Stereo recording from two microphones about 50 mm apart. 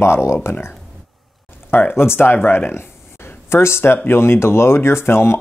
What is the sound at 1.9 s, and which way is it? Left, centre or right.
Speech, left.